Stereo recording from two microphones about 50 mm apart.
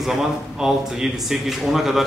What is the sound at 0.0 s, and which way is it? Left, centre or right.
A man's voice, centre.